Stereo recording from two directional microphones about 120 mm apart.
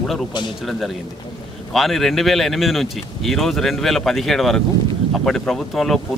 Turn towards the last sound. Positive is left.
turn(degrees=0)  # may be behind; listen again after turning